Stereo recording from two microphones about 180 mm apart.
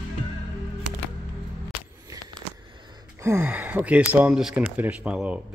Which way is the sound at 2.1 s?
20° right (ahead or behind).